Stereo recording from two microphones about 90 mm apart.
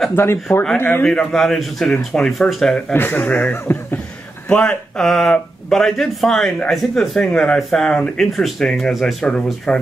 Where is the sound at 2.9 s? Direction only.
20° left (ahead or behind).